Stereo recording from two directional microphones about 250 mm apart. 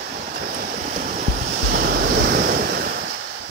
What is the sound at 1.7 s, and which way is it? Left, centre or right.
Waves, right.